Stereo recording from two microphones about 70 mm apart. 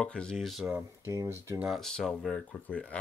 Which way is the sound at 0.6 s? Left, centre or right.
Right.